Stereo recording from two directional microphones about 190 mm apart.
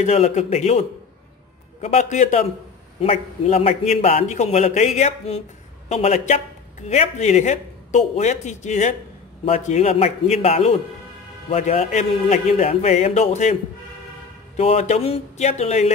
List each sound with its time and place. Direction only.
0.0 s a man's voice: 35° left (ahead or behind)
14.6 s a man's voice: 35° left (ahead or behind)